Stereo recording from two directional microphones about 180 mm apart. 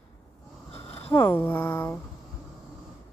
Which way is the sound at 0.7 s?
30° left (ahead or behind).